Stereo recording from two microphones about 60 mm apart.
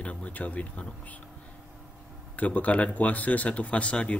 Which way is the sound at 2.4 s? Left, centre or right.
Left.